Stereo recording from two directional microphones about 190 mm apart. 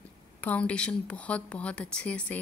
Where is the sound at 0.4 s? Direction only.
5° left (ahead or behind).